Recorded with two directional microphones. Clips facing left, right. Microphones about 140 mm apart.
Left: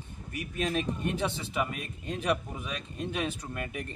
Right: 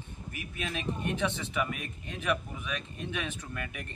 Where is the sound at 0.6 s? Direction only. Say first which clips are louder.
Left 4 dB; 40° left (ahead or behind).